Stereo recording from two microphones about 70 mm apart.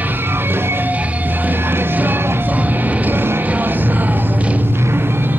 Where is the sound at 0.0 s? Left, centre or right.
Right.